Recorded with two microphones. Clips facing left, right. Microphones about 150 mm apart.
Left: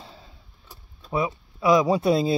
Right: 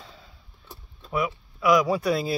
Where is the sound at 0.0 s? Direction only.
30° left (ahead or behind).